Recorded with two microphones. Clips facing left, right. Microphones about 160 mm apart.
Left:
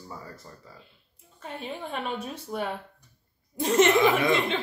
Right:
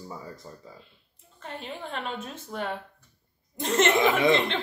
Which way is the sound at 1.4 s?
10° left (ahead or behind).